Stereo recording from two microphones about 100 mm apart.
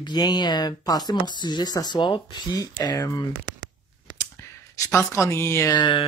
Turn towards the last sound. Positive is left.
turn(degrees=50)  # may be behind; listen again after turning